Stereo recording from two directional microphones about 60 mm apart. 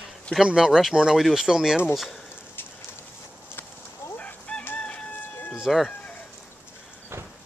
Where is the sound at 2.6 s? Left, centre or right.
Left.